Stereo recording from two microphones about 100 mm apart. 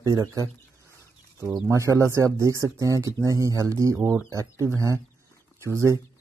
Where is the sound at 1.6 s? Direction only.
30° right (ahead or behind).